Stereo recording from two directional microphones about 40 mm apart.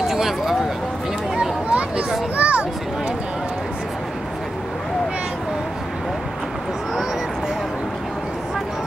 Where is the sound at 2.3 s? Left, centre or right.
Right.